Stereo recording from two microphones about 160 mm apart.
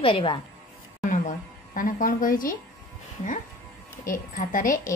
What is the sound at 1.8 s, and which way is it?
Speech, 60° left (ahead or behind).